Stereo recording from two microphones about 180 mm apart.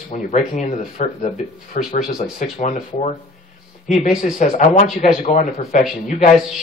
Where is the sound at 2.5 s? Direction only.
35° left (ahead or behind).